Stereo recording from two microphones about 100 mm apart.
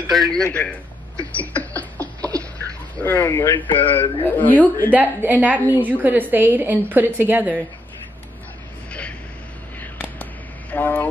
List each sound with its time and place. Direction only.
0.1 s a man's voice: 5° left (ahead or behind)
1.2 s a sound: 15° left (ahead or behind)
3.0 s speech: 20° left (ahead or behind)
4.9 s a woman's voice: 15° right (ahead or behind)
9.9 s a sound: 15° left (ahead or behind)
10.7 s speech: 20° left (ahead or behind)